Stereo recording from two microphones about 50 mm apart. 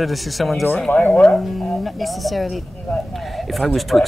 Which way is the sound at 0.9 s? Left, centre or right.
Left.